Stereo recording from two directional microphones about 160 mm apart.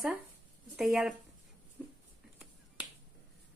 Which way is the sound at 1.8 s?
5° right (ahead or behind).